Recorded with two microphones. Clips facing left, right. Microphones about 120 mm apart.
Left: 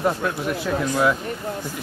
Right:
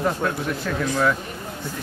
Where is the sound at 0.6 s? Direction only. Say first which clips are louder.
Left 2 dB; 10° left (ahead or behind).